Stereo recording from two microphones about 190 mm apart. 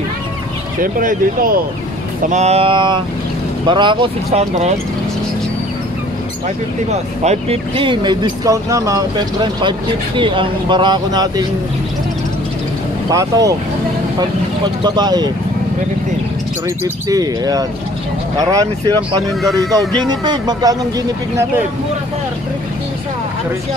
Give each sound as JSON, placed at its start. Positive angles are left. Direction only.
{"t": 0.7, "sound": "speech", "side_deg": -45}
{"t": 6.9, "sound": "speech", "side_deg": -35}
{"t": 13.1, "sound": "speech", "side_deg": -20}
{"t": 14.8, "sound": "speech", "side_deg": -20}
{"t": 16.6, "sound": "speech", "side_deg": -15}
{"t": 20.1, "sound": "speech", "side_deg": -20}